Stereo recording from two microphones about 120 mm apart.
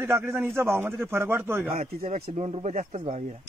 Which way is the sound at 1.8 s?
65° right (ahead or behind).